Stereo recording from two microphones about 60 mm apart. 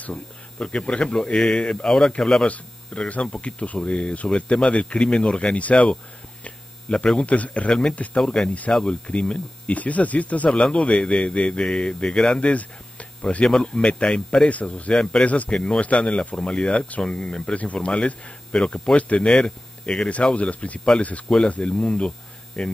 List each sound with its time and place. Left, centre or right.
0.0 s speech: centre
2.4 s speech: left
8.2 s speech: centre
15.5 s speech: centre
18.9 s speech: left